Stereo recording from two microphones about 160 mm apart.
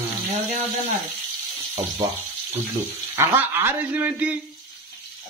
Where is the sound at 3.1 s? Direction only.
15° right (ahead or behind).